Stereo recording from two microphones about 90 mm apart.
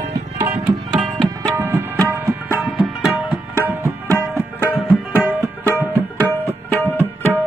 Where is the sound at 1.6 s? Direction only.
30° right (ahead or behind).